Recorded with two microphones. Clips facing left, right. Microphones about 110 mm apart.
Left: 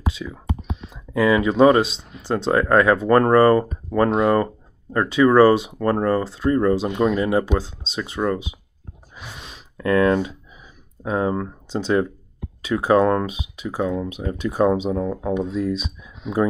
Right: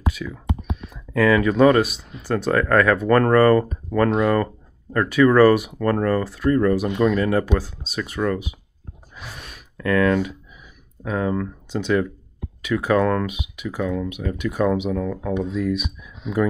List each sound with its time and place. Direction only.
0.1 s speech: 20° left (ahead or behind)
9.1 s a sound: 20° left (ahead or behind)
11.1 s speech: 25° left (ahead or behind)